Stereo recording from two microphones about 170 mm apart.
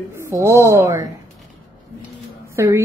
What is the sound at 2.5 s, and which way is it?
Speech, 15° right (ahead or behind).